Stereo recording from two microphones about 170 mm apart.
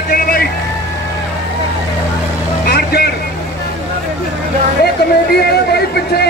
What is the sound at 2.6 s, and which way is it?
Vehicle, 65° left (ahead or behind).